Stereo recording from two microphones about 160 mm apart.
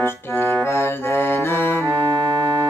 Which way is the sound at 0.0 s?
15° left (ahead or behind).